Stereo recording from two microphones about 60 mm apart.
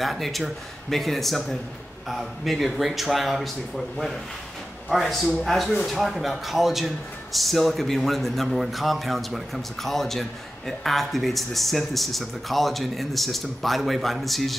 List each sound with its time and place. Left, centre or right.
0.0 s a man's voice: centre